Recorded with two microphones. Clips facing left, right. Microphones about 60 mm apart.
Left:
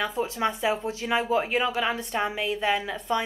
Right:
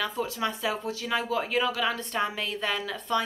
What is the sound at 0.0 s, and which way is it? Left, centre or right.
A woman's voice, left.